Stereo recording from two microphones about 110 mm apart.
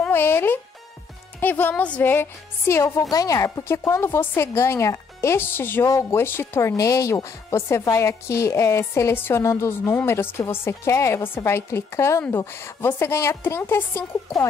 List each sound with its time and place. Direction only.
0.1 s music: 20° left (ahead or behind)
1.4 s speech: 15° left (ahead or behind)